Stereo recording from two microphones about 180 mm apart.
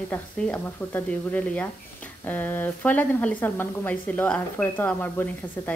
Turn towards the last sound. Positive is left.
turn(degrees=10)  # may be behind; listen again after turning